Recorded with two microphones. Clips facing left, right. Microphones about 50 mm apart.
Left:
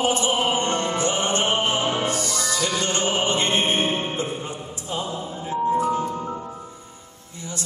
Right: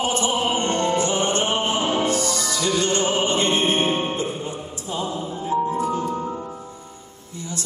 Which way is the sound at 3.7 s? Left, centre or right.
Right.